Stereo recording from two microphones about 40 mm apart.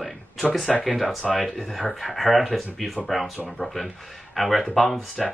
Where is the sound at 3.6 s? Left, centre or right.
Left.